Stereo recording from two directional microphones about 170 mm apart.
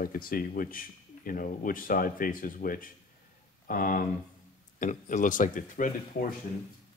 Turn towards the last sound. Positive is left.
turn(degrees=50)  # may be behind; listen again after turning